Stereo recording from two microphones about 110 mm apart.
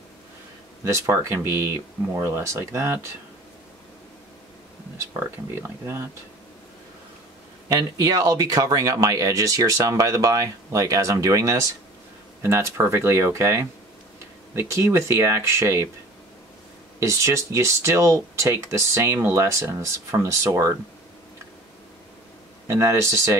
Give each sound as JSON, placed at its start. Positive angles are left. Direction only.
{"t": 0.8, "sound": "speech", "side_deg": -25}
{"t": 5.2, "sound": "speech", "side_deg": -20}
{"t": 7.6, "sound": "speech", "side_deg": -35}
{"t": 17.0, "sound": "speech", "side_deg": -25}
{"t": 22.7, "sound": "speech", "side_deg": -25}